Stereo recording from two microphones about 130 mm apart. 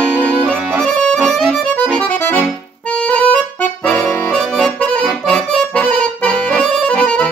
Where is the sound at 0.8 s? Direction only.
5° left (ahead or behind).